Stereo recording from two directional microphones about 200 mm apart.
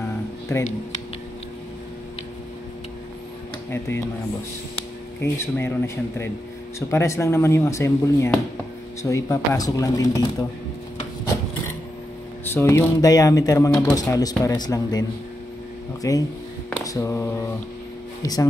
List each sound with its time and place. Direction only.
5.2 s speech: 10° left (ahead or behind)
12.4 s speech: 10° left (ahead or behind)